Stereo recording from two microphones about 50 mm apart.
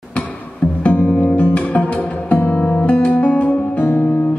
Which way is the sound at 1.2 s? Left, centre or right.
Left.